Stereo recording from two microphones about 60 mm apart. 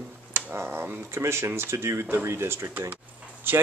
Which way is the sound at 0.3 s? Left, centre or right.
Right.